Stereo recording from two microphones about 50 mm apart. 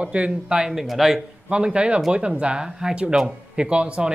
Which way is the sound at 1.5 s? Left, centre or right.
Centre.